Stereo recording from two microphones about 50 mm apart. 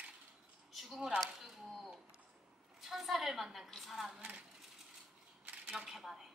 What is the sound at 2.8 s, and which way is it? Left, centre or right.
A woman's voice, centre.